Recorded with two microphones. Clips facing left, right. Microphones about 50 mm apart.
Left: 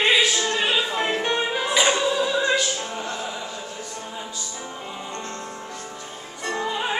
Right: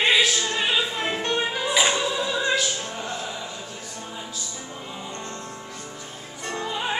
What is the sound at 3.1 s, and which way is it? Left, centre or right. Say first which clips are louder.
Chant: left 2 dB; centre.